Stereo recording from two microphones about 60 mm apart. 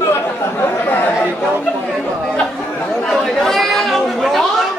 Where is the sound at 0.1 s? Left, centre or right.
Left.